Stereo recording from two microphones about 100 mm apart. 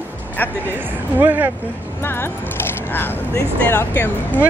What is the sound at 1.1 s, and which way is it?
Speech, 20° right (ahead or behind).